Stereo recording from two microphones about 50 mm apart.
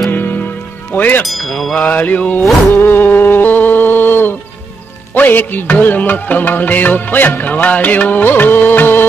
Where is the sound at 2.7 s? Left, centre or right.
Left.